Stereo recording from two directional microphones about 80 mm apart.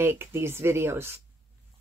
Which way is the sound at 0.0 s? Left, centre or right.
Right.